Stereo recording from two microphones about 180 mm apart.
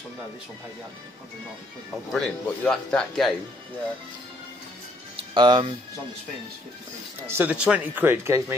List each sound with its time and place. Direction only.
2.1 s speech: 5° left (ahead or behind)
5.1 s speech: 25° right (ahead or behind)
7.2 s speech: 10° right (ahead or behind)